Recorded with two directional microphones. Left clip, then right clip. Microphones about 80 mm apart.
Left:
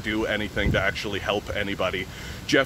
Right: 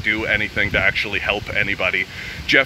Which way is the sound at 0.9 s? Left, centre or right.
Left.